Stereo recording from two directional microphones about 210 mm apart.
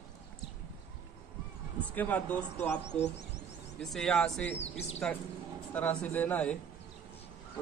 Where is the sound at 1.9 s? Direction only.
5° left (ahead or behind).